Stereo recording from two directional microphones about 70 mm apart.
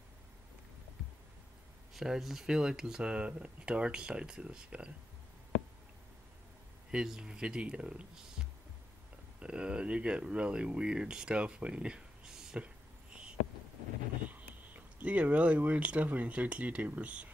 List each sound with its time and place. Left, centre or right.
2.0 s speech: centre
6.9 s speech: centre
15.0 s speech: centre